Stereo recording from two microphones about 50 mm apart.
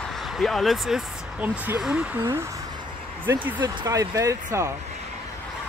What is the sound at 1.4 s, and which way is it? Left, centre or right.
Speech, right.